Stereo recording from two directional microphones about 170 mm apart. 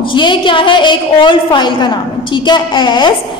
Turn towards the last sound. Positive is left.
turn(degrees=25)  # may be behind; listen again after turning